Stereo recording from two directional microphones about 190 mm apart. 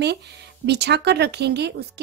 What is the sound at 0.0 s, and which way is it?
A woman's voice, 60° right (ahead or behind).